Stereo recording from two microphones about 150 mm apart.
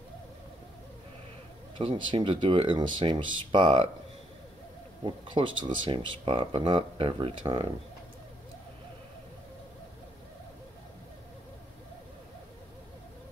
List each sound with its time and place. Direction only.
1.8 s speech: 40° right (ahead or behind)
5.0 s speech: 30° right (ahead or behind)